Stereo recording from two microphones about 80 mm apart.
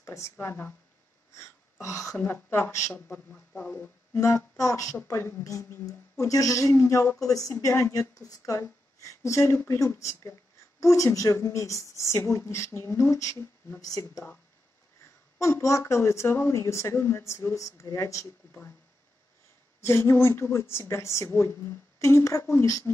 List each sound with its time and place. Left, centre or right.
0.0 s speech: left
1.3 s throat clearing: left
2.1 s speech: left
3.5 s speech: centre
4.1 s speech: left
15.3 s speech: left
19.8 s speech: left